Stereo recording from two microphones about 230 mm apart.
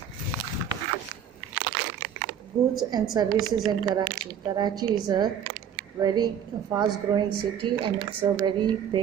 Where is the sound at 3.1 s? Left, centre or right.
Centre.